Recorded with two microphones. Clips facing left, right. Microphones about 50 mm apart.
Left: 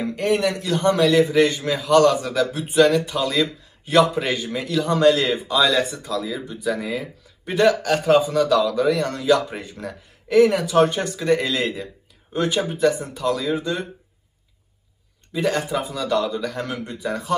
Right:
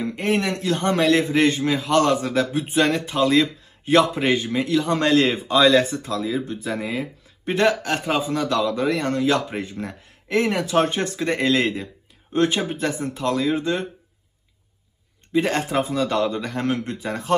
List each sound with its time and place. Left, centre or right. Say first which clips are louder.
0.2 s a man's voice: left 2 dB; right
4.8 s a man's voice: left 4 dB; right
15.3 s a man's voice: right 1 dB; right